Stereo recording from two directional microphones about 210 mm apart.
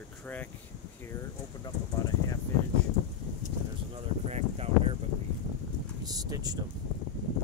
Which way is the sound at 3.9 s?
30° right (ahead or behind).